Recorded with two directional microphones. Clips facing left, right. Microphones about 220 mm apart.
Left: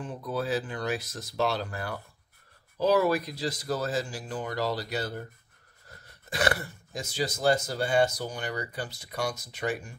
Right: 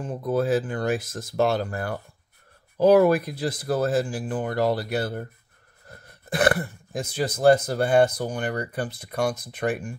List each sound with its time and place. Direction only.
0.0 s speech: 45° right (ahead or behind)